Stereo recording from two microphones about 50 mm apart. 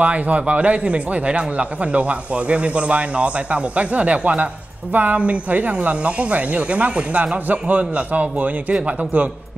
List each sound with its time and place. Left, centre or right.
0.0 s a man's voice: right